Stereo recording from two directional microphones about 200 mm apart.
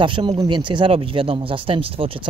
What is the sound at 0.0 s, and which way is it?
Speech, 25° right (ahead or behind).